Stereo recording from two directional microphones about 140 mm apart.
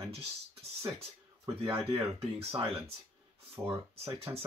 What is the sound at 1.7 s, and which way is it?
Speech, 40° right (ahead or behind).